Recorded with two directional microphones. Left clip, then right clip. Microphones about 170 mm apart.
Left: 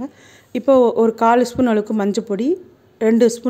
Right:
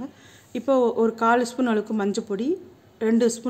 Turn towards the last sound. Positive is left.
turn(degrees=30)  # may be behind; listen again after turning